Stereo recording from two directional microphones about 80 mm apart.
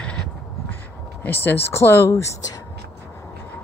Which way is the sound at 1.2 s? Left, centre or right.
Left.